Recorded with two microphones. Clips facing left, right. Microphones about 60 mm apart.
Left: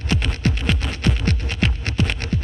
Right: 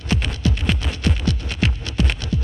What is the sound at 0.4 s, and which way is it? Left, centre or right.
Music, left.